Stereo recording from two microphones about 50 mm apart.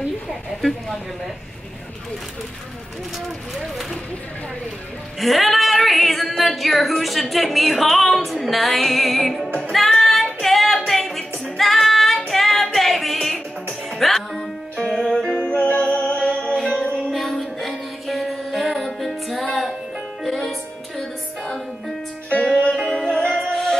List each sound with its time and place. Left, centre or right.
0.3 s a woman's voice: centre
5.2 s female singing: centre
9.7 s music: centre
15.5 s music: left; by 21.5 s centre
22.3 s music: left
22.8 s music: centre